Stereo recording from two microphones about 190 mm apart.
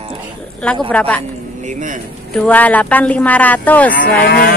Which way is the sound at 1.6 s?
40° right (ahead or behind).